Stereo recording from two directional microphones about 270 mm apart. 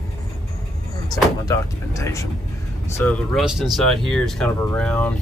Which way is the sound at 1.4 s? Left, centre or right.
Centre.